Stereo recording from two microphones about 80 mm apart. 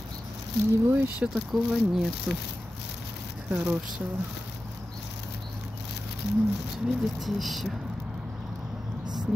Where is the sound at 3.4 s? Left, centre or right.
Centre.